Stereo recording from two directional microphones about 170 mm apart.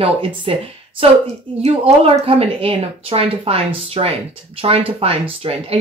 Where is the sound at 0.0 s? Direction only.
30° right (ahead or behind).